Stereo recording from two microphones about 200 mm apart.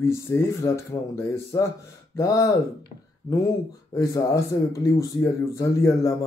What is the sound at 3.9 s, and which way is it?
Speech, 15° left (ahead or behind).